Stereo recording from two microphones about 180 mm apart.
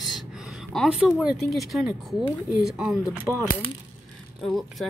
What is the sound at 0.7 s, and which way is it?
Speech, 5° right (ahead or behind).